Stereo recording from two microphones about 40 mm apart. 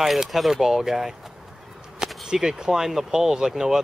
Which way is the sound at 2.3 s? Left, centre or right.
Centre.